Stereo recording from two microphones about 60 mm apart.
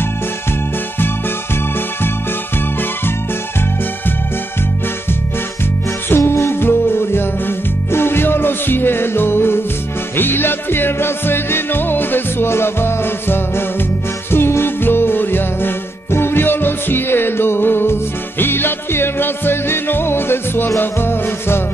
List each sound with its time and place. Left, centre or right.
0.9 s music: left
6.0 s music: left